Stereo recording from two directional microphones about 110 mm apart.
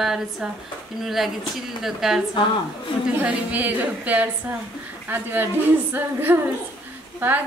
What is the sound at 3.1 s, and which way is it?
A woman's voice, 15° right (ahead or behind).